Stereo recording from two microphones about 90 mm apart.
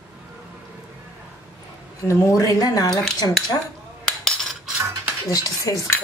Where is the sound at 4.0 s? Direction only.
5° left (ahead or behind).